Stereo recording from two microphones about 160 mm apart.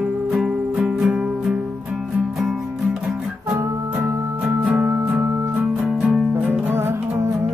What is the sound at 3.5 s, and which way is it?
Music, 20° right (ahead or behind).